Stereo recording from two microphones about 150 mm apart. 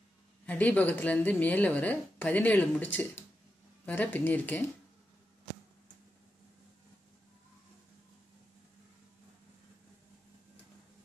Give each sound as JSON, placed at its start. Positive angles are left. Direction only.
{"t": 0.5, "sound": "a woman's voice", "side_deg": 10}